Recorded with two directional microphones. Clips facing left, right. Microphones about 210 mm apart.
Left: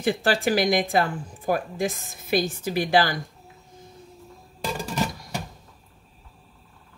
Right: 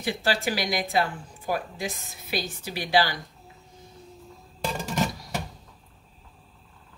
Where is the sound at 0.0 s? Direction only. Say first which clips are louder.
Left 4 dB; 50° left (ahead or behind).